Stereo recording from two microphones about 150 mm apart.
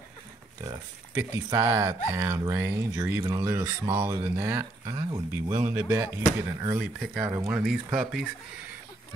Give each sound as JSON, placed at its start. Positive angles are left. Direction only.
{"t": 0.7, "sound": "speech", "side_deg": -20}
{"t": 7.5, "sound": "speech", "side_deg": -5}